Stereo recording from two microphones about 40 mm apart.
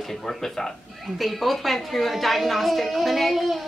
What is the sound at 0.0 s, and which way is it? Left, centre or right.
Speech, centre.